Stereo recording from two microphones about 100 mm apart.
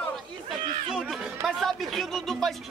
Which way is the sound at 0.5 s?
5° right (ahead or behind).